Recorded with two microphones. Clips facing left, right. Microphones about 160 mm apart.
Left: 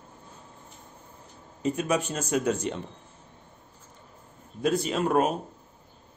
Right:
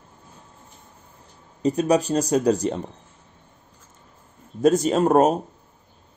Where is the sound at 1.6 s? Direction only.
35° right (ahead or behind).